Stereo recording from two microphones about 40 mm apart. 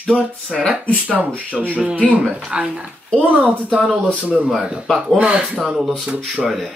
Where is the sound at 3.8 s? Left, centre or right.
Left.